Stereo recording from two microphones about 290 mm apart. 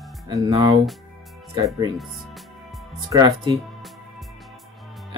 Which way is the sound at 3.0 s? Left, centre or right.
Centre.